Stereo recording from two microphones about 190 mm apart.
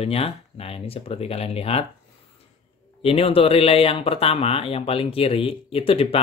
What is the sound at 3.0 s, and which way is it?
Speech, 30° left (ahead or behind).